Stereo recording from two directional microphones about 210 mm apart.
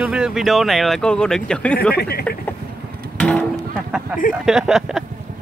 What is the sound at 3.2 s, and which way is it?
Music, 5° left (ahead or behind).